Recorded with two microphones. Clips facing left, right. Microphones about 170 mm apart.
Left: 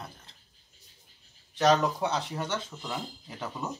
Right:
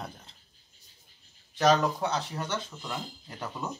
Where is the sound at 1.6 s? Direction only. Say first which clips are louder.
Even; centre (ahead or behind).